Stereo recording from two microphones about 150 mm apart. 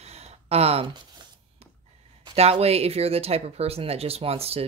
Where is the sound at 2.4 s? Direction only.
45° right (ahead or behind).